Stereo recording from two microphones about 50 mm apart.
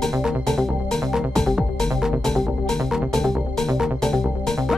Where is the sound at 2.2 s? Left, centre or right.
Centre.